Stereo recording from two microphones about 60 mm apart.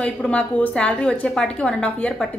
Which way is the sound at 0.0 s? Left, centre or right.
Centre.